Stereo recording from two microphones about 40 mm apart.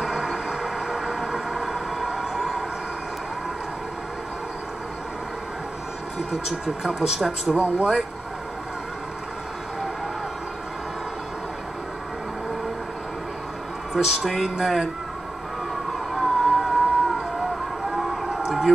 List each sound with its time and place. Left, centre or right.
0.0 s vehicle: centre
0.5 s train: centre
6.6 s speech: centre
7.2 s speech: centre
7.5 s speech: right
13.9 s speech: centre
16.2 s vehicle: centre
17.9 s siren: centre